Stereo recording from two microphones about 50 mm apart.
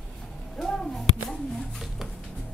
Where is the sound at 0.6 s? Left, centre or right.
Centre.